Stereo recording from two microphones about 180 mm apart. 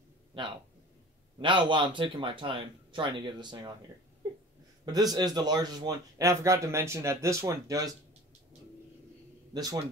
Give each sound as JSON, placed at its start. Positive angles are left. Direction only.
{"t": 0.3, "sound": "a man's voice", "side_deg": -25}
{"t": 4.8, "sound": "a man's voice", "side_deg": -20}
{"t": 9.5, "sound": "speech", "side_deg": -20}